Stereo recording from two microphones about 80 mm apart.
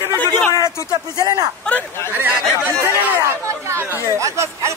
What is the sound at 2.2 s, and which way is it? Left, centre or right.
Speech, right.